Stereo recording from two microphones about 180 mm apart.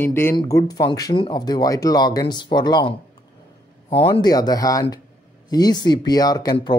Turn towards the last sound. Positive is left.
turn(degrees=25)  # may be behind; listen again after turning